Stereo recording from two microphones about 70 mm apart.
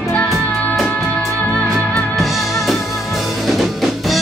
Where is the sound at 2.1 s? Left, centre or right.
Centre.